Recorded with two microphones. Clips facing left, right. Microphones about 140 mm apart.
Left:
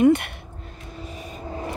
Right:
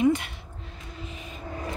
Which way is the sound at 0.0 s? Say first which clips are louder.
Left 6 dB; 60° left (ahead or behind).